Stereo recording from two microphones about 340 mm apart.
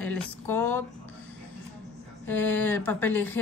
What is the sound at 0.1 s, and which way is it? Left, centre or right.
Speech, centre.